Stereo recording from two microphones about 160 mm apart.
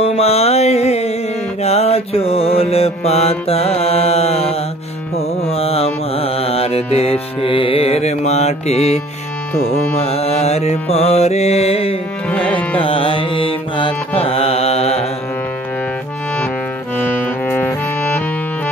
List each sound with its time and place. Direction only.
0.0 s mantra: 40° left (ahead or behind)
5.1 s music: 40° left (ahead or behind)
9.9 s mantra: 40° left (ahead or behind)
12.3 s music: 10° left (ahead or behind)
12.7 s music: 35° left (ahead or behind)
17.0 s music: 10° left (ahead or behind)